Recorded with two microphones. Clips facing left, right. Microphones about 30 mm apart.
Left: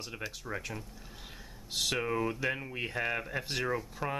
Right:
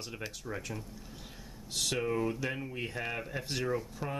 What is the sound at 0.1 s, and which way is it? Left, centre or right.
Speech, centre.